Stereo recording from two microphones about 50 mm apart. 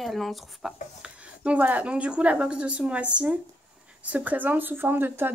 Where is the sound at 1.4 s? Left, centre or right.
Right.